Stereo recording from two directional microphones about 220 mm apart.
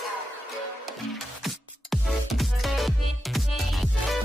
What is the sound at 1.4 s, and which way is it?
Music, centre (ahead or behind).